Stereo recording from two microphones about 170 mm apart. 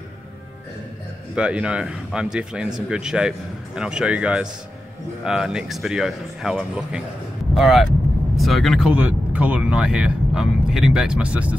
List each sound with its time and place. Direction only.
1.3 s speech: 5° right (ahead or behind)